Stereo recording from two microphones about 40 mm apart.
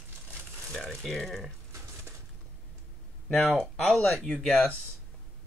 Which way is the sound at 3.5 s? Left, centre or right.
Centre.